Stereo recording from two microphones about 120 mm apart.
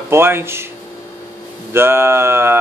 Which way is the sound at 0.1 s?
20° right (ahead or behind).